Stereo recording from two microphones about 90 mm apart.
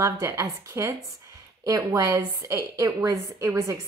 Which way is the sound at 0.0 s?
35° right (ahead or behind).